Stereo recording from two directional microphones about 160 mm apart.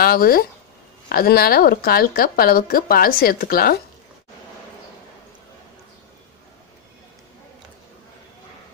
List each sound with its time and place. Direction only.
0.0 s a woman's voice: 70° left (ahead or behind)